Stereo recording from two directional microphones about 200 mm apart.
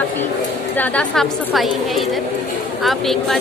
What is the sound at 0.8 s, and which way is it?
A woman's voice, 5° left (ahead or behind).